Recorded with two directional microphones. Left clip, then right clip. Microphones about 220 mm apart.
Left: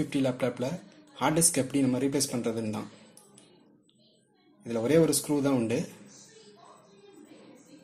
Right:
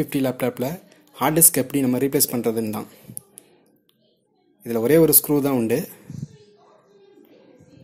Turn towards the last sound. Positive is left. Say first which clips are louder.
# right 6 dB
turn(degrees=-45)  # may be behind; listen again after turning